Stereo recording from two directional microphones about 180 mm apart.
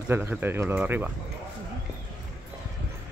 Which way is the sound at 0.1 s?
10° right (ahead or behind).